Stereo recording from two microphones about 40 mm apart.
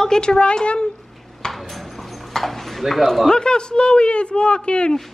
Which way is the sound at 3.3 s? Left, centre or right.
Left.